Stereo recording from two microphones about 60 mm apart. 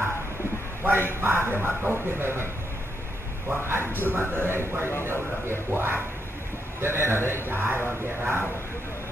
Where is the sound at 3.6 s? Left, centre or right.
Right.